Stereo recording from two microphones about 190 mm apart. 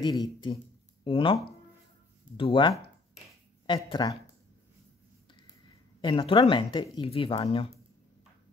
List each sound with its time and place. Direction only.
0.0 s speech: 25° left (ahead or behind)
5.9 s speech: 25° left (ahead or behind)